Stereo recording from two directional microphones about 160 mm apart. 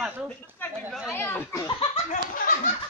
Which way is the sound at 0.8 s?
5° right (ahead or behind).